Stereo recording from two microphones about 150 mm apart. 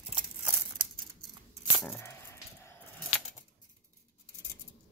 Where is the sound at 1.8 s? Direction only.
15° left (ahead or behind).